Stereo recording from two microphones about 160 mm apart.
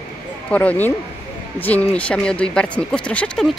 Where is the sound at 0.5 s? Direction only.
10° left (ahead or behind).